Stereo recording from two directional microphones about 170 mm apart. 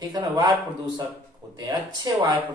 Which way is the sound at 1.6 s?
25° right (ahead or behind).